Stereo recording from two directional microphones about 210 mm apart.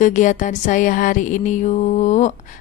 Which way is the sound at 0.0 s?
35° left (ahead or behind).